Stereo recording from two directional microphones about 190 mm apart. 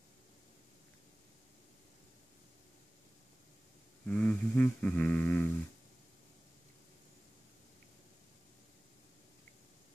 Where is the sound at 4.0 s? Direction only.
5° left (ahead or behind).